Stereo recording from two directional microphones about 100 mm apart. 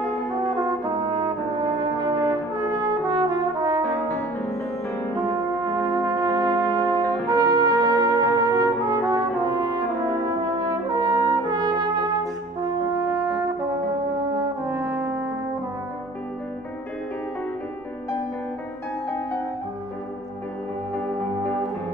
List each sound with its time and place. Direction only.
0.3 s brass instrument: 45° right (ahead or behind)
5.2 s music: 45° right (ahead or behind)
7.2 s trumpet: 40° right (ahead or behind)
10.4 s brass instrument: 50° right (ahead or behind)
14.6 s brass instrument: 15° right (ahead or behind)